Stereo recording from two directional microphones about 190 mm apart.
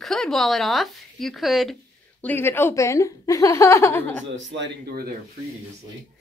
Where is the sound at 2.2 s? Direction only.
10° left (ahead or behind).